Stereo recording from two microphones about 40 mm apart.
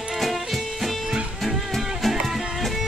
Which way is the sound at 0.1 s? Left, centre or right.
Centre.